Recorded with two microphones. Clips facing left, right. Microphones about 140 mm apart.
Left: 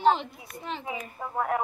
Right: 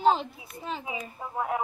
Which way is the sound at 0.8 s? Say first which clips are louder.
Left 1 dB; 15° right (ahead or behind).